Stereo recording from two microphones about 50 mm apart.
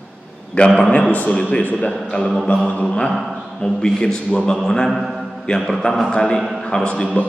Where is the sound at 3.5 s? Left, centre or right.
Centre.